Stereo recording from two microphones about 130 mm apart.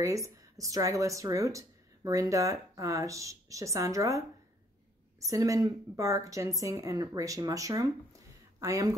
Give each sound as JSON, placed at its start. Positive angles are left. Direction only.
{"t": 0.0, "sound": "speech", "side_deg": -25}
{"t": 5.2, "sound": "speech", "side_deg": -25}